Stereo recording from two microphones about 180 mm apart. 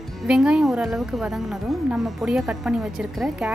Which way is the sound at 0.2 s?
5° right (ahead or behind).